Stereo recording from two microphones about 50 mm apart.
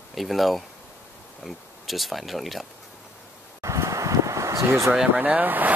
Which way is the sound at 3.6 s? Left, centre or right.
Right.